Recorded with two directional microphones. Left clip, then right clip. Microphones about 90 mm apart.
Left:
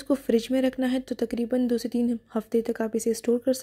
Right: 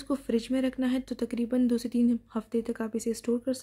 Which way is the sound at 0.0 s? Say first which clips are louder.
Left 6 dB; 40° left (ahead or behind).